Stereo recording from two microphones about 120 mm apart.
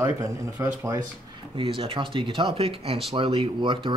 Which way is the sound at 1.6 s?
45° right (ahead or behind).